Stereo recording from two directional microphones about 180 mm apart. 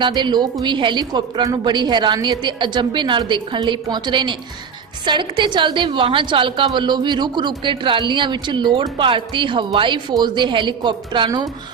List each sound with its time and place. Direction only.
0.0 s a woman's voice: 25° right (ahead or behind)